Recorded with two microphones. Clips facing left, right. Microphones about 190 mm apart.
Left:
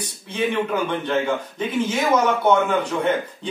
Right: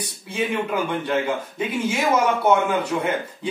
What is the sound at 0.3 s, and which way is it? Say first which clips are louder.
A man's voice: left 2 dB; 10° right (ahead or behind).